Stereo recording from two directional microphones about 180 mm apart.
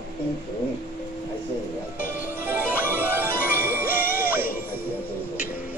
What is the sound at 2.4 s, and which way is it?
Music, 10° right (ahead or behind).